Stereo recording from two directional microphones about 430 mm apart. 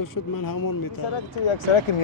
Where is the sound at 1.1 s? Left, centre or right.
Left.